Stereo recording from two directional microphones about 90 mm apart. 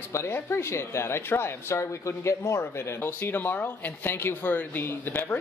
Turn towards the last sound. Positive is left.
turn(degrees=25)  # may be behind; listen again after turning